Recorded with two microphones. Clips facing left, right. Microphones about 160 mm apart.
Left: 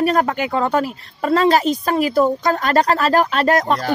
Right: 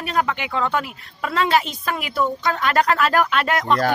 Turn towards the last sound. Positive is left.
turn(degrees=40)  # may be behind; listen again after turning